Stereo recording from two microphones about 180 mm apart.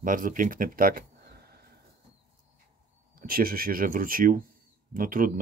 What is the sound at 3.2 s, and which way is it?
Speech, 55° right (ahead or behind).